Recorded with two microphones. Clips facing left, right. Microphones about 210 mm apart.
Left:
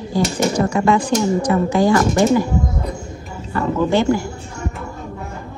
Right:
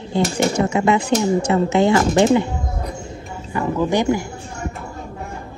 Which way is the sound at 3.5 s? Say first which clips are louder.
Left 2 dB; 15° right (ahead or behind).